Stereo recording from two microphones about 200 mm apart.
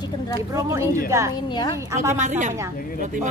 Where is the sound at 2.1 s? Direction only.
35° right (ahead or behind).